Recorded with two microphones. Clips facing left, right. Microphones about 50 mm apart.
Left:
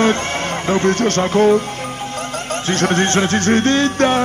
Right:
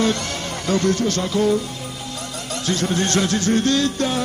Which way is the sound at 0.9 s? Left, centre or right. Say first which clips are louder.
Left 6 dB; left.